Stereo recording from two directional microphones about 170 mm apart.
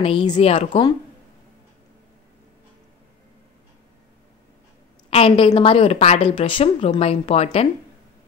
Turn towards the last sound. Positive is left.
turn(degrees=35)  # may be behind; listen again after turning